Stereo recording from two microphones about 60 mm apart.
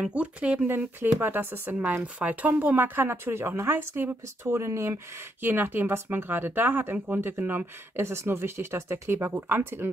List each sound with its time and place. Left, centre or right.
0.1 s speech: right
0.7 s speech: right
3.7 s speech: right
5.4 s speech: right